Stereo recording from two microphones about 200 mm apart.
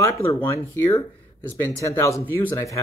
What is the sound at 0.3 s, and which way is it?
Speech, 15° left (ahead or behind).